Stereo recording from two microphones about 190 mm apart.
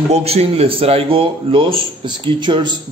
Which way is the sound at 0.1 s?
35° right (ahead or behind).